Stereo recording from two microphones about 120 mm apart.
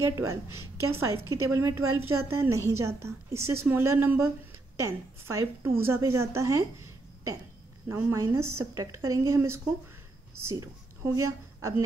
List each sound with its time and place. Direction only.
0.0 s a woman's voice: 25° right (ahead or behind)
7.9 s a woman's voice: 25° right (ahead or behind)